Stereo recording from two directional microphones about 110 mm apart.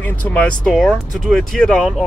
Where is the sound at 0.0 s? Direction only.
15° left (ahead or behind).